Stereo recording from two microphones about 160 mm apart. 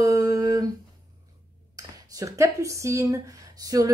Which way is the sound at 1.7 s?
20° right (ahead or behind).